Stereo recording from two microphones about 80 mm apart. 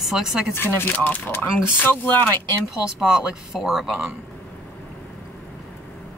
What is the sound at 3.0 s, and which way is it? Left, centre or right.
Speech, centre.